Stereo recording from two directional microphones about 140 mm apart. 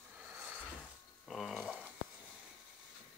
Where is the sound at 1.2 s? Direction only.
Centre (ahead or behind).